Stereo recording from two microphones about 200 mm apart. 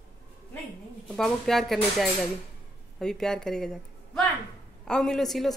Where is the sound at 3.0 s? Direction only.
5° left (ahead or behind).